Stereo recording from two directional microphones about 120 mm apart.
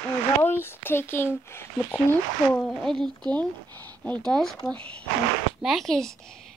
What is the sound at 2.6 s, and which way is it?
Speech, 5° left (ahead or behind).